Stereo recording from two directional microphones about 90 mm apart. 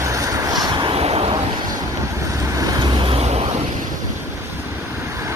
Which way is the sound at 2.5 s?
40° right (ahead or behind).